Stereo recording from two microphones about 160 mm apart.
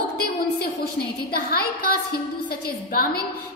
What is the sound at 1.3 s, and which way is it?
A woman's voice, 70° left (ahead or behind).